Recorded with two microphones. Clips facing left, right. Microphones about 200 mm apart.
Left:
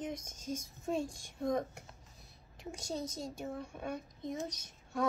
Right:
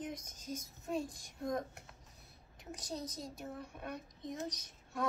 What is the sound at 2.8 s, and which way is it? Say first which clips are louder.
Speech: left 4 dB; 25° left (ahead or behind).